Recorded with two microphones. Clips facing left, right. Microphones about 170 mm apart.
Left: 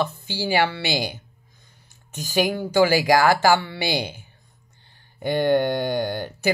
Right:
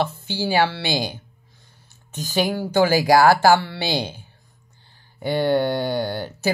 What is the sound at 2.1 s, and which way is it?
Speech, 15° left (ahead or behind).